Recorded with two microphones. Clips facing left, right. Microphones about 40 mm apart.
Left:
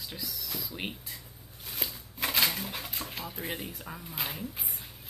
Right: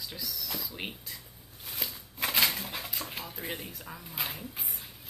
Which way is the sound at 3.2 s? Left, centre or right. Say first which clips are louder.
Left 2 dB; centre.